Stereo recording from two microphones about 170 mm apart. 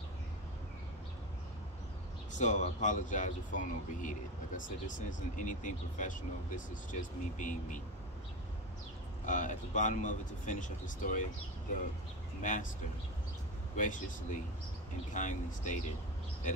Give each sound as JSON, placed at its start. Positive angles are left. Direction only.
{"t": 2.3, "sound": "speech", "side_deg": 45}
{"t": 9.2, "sound": "speech", "side_deg": 45}
{"t": 12.4, "sound": "speech", "side_deg": 50}
{"t": 13.7, "sound": "speech", "side_deg": 50}